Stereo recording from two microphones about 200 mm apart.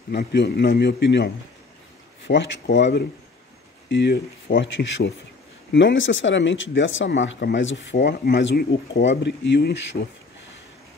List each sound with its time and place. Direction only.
0.1 s speech: 55° left (ahead or behind)